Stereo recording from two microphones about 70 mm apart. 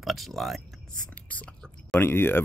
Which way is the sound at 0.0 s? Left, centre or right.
Centre.